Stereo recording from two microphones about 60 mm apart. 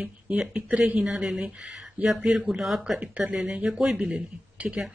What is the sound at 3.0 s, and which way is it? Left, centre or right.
Speech, right.